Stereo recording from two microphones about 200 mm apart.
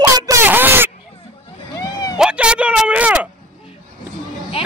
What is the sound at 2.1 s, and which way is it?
Speech, 5° right (ahead or behind).